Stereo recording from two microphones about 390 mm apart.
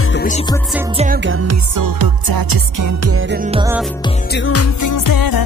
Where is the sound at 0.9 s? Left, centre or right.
Right.